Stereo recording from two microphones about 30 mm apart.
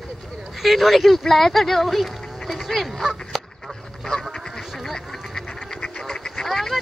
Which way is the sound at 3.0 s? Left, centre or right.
Centre.